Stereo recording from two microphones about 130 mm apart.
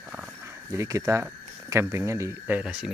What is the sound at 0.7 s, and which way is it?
Speech, 25° right (ahead or behind).